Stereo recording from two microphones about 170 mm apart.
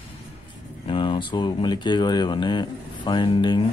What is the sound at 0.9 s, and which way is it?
Speech, 30° left (ahead or behind).